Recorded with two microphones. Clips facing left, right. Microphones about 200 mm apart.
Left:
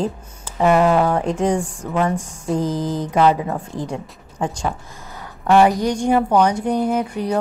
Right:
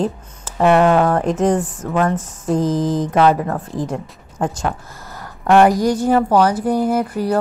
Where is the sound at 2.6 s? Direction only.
90° right.